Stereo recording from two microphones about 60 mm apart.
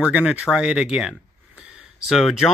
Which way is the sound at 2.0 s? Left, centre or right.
Centre.